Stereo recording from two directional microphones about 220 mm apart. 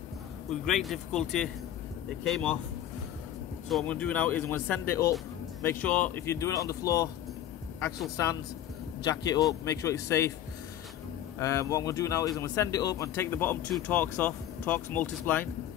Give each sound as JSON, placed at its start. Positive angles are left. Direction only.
{"t": 0.5, "sound": "speech", "side_deg": 0}
{"t": 3.7, "sound": "speech", "side_deg": 5}
{"t": 9.0, "sound": "speech", "side_deg": 15}
{"t": 11.3, "sound": "speech", "side_deg": 15}